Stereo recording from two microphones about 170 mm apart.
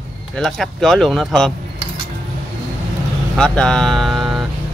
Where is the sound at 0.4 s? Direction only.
Centre (ahead or behind).